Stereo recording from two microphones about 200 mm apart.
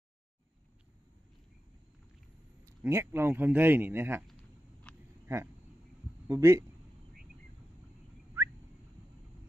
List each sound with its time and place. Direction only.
2.6 s a man's voice: 15° right (ahead or behind)
5.2 s a sound: 15° right (ahead or behind)
6.2 s speech: 15° right (ahead or behind)